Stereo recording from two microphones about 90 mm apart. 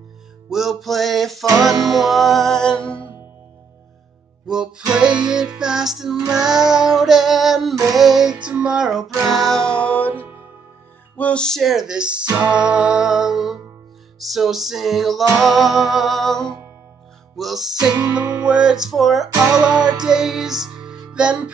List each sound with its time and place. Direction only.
0.5 s music: centre (ahead or behind)
4.5 s music: 5° right (ahead or behind)
6.3 s female singing: 5° right (ahead or behind)
7.9 s music: 5° right (ahead or behind)
10.0 s music: 20° right (ahead or behind)
11.1 s speech: 15° left (ahead or behind)
11.9 s music: 10° right (ahead or behind)
17.9 s music: 50° right (ahead or behind)
18.4 s music: 10° right (ahead or behind)
19.2 s music: 45° right (ahead or behind)
19.8 s music: 55° right (ahead or behind)
20.1 s music: 5° right (ahead or behind)